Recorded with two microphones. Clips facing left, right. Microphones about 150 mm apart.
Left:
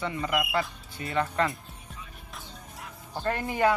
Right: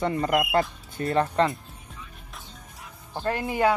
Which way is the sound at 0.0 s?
40° right (ahead or behind).